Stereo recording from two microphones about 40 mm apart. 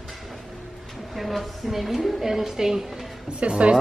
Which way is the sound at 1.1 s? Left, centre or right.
Centre.